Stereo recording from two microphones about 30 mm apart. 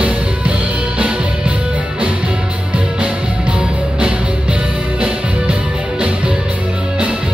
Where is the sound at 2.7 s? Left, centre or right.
Right.